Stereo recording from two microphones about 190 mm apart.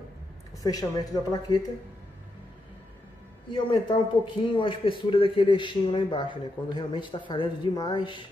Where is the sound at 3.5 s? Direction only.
25° left (ahead or behind).